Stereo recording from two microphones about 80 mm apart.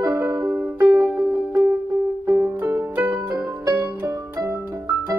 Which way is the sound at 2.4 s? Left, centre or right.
Right.